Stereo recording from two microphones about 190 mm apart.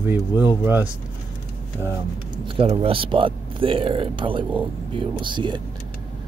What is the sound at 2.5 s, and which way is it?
Speech, 30° right (ahead or behind).